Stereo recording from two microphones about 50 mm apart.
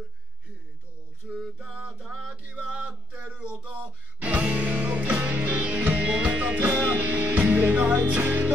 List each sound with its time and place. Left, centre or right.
1.3 s music: right
1.9 s music: centre
2.5 s a sound: right
3.3 s music: right